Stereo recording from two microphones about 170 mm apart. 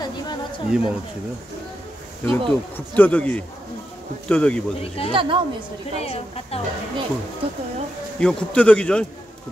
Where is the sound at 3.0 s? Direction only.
10° left (ahead or behind).